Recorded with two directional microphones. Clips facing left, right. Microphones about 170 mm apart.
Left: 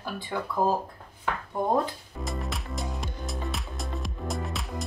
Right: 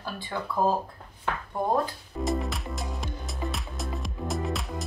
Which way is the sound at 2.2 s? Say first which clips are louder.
Right 5 dB; centre (ahead or behind).